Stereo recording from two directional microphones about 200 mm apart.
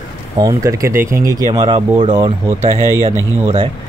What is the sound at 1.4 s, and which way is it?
Speech, 25° right (ahead or behind).